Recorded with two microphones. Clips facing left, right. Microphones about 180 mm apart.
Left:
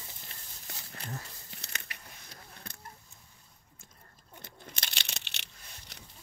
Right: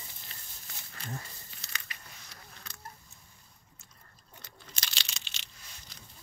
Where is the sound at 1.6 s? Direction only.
60° left (ahead or behind).